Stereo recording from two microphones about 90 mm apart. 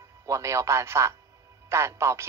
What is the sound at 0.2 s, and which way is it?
A man's voice, 35° right (ahead or behind).